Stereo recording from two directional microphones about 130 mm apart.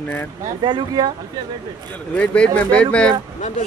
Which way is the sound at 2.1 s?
10° left (ahead or behind).